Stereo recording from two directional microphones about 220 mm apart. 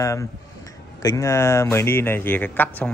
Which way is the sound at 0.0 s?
15° left (ahead or behind).